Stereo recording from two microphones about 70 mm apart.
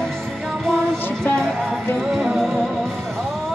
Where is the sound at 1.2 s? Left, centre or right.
Centre.